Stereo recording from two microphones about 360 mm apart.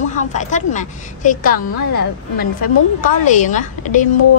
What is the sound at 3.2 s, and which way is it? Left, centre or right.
Speech, centre.